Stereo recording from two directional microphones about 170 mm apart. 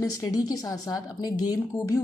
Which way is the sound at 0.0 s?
20° left (ahead or behind).